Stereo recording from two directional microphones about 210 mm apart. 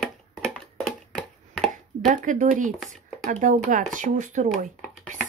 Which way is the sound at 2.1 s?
35° right (ahead or behind).